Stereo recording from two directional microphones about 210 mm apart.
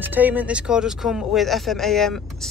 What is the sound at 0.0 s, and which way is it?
Speech, 10° right (ahead or behind).